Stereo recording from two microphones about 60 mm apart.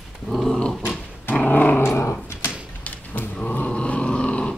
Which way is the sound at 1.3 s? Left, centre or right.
Left.